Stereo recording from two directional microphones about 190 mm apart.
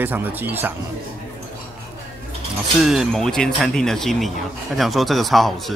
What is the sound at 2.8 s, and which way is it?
Speech, centre (ahead or behind).